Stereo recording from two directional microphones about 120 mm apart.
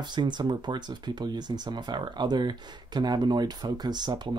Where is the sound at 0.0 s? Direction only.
40° right (ahead or behind).